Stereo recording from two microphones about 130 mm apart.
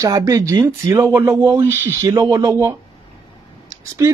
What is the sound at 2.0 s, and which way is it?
Speech, 30° right (ahead or behind).